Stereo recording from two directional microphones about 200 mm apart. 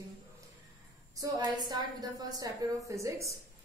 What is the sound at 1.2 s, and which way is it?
A woman's voice, 20° right (ahead or behind).